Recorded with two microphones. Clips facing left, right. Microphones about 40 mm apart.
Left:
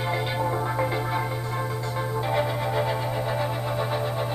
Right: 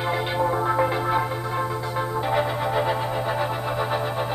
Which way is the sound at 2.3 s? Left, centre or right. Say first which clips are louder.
Right 2 dB; centre.